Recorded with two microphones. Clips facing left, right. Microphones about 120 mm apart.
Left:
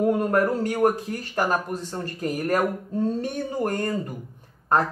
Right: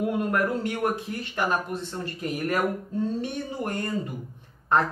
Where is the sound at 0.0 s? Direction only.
40° left (ahead or behind).